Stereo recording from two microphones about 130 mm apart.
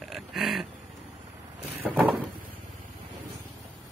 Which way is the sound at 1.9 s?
15° right (ahead or behind).